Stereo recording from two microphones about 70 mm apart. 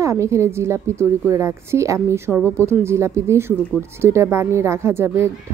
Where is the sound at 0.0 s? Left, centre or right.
Right.